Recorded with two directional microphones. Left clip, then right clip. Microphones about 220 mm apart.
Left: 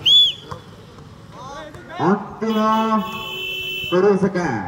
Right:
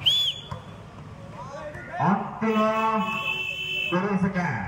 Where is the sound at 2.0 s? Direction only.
30° left (ahead or behind).